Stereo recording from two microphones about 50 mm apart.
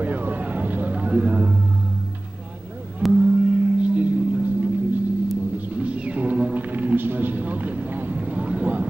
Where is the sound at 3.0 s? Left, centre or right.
Centre.